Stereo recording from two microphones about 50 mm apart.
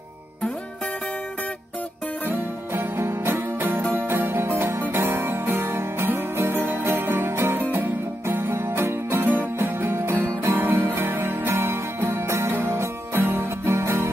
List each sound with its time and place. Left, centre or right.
2.2 s music: right